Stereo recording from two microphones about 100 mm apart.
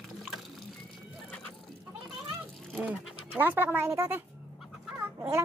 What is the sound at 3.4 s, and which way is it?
Speech, 20° right (ahead or behind).